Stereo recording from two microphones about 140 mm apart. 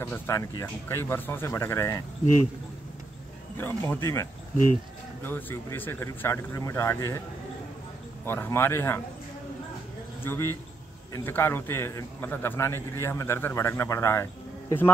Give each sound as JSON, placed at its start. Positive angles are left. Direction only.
{"t": 0.0, "sound": "speech", "side_deg": 20}
{"t": 3.5, "sound": "a man's voice", "side_deg": 15}
{"t": 8.3, "sound": "a man's voice", "side_deg": 15}
{"t": 10.2, "sound": "a man's voice", "side_deg": 20}